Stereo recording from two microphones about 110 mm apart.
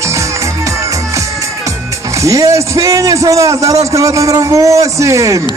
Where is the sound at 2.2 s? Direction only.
30° right (ahead or behind).